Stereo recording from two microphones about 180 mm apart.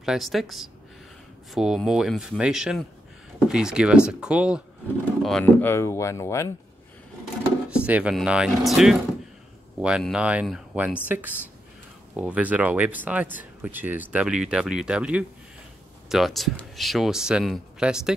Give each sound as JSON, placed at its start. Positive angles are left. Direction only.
{"t": 0.0, "sound": "speech", "side_deg": 0}
{"t": 5.2, "sound": "speech", "side_deg": 5}
{"t": 7.7, "sound": "speech", "side_deg": -5}